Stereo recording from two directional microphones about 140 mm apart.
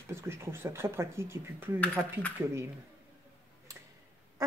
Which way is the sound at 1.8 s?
10° left (ahead or behind).